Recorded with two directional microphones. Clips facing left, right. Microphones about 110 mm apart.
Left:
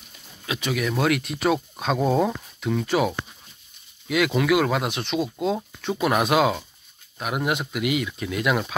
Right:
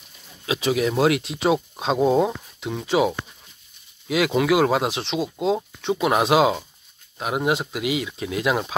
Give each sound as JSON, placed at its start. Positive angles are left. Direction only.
{"t": 0.5, "sound": "speech", "side_deg": -30}